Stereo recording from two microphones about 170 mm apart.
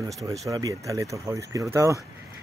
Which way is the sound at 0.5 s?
20° right (ahead or behind).